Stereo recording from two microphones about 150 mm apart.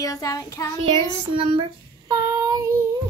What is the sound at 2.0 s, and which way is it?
Child singing, 20° right (ahead or behind).